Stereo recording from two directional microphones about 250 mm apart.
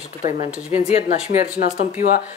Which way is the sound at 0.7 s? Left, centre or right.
Left.